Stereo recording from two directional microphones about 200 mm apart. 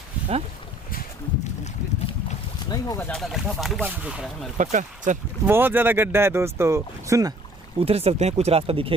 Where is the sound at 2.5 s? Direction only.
20° left (ahead or behind).